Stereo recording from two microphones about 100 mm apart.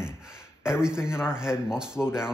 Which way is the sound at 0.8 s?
5° right (ahead or behind).